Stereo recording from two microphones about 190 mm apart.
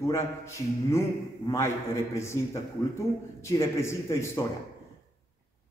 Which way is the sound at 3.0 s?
15° left (ahead or behind).